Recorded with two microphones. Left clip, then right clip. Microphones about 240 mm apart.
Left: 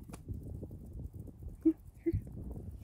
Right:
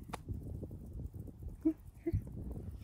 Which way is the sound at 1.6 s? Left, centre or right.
Centre.